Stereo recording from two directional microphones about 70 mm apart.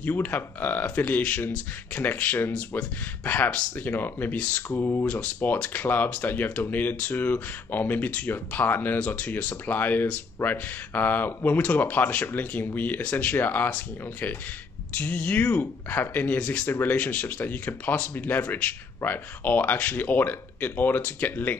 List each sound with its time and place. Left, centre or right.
0.0 s speech: left
4.7 s speech: left
5.0 s speech: left